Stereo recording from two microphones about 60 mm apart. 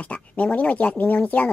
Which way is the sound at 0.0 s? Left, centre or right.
Left.